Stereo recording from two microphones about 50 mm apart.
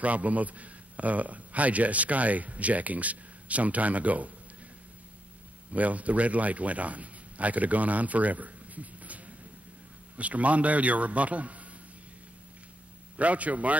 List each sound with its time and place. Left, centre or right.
0.0 s speech: right
5.7 s a man's voice: right
13.2 s a man's voice: right